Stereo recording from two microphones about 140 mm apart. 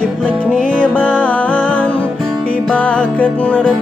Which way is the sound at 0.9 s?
10° left (ahead or behind).